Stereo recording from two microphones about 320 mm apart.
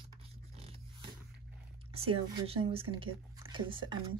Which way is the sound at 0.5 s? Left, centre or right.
Centre.